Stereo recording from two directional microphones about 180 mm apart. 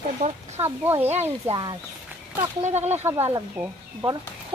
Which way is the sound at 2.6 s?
35° right (ahead or behind).